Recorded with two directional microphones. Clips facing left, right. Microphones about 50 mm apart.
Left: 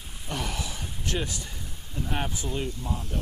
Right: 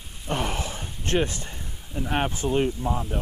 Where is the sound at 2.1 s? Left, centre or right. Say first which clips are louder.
Right 8 dB; right.